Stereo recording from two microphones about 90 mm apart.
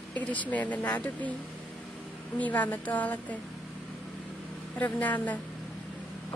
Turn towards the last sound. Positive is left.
turn(degrees=15)  # may be behind; listen again after turning